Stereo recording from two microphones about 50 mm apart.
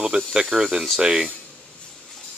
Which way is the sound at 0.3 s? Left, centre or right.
Centre.